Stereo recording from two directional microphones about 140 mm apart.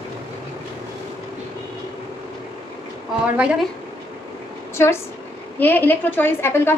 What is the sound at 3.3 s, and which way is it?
Speech, 10° right (ahead or behind).